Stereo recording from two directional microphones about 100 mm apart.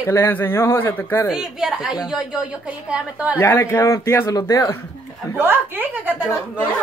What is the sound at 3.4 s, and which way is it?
Speech, 25° left (ahead or behind).